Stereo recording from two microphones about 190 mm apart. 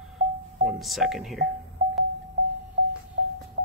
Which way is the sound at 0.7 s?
Centre (ahead or behind).